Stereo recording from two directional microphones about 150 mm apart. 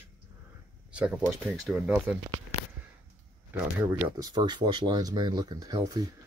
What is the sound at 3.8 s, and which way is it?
Speech, 20° right (ahead or behind).